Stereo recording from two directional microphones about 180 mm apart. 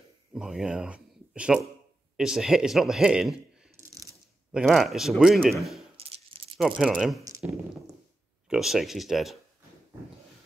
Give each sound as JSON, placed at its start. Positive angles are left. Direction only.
{"t": 0.3, "sound": "a man's voice", "side_deg": 0}
{"t": 4.5, "sound": "a man's voice", "side_deg": -5}
{"t": 5.9, "sound": "rattle", "side_deg": -35}
{"t": 6.6, "sound": "a man's voice", "side_deg": -5}
{"t": 8.5, "sound": "a man's voice", "side_deg": 0}